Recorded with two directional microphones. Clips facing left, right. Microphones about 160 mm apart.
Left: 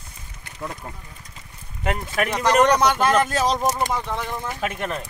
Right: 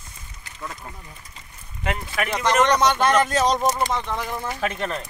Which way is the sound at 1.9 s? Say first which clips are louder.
Left 3 dB; 45° left (ahead or behind).